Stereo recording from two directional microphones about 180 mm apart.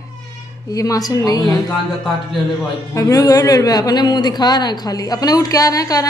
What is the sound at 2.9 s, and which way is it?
A man's voice, 20° left (ahead or behind).